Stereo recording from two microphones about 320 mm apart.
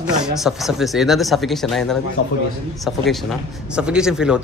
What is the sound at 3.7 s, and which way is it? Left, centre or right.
Speech, centre.